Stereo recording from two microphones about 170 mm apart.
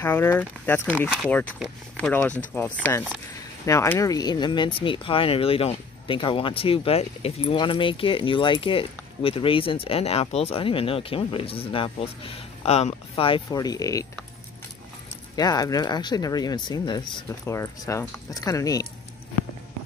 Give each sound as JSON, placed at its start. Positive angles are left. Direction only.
{"t": 0.0, "sound": "speech", "side_deg": 15}
{"t": 15.3, "sound": "speech", "side_deg": 20}